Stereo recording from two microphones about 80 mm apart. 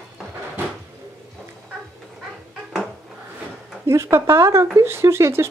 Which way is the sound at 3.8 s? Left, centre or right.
Right.